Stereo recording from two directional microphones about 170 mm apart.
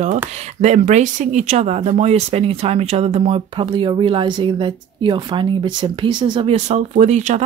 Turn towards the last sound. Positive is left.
turn(degrees=-45)  # may be behind; listen again after turning